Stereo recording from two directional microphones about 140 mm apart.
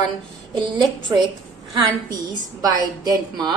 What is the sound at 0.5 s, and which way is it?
Speech, 35° right (ahead or behind).